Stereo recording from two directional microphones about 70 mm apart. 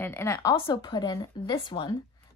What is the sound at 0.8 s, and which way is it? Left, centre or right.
Speech, left.